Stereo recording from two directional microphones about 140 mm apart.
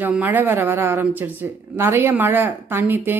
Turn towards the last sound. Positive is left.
turn(degrees=-15)  # may be behind; listen again after turning